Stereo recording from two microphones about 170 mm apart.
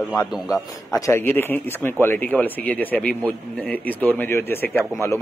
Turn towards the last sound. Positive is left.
turn(degrees=15)  # may be behind; listen again after turning